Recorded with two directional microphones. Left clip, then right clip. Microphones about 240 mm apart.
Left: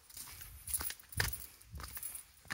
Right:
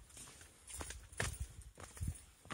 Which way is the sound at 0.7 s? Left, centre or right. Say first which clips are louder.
Left 6 dB; left.